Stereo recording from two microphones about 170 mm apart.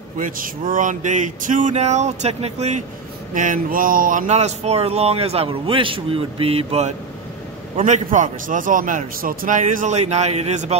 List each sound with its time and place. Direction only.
0.2 s a man's voice: 50° right (ahead or behind)
3.3 s a man's voice: 50° right (ahead or behind)